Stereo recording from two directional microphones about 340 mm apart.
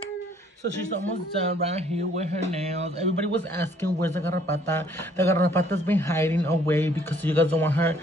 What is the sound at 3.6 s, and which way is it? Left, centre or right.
Speech, centre.